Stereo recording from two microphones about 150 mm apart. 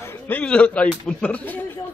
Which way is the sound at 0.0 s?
15° left (ahead or behind).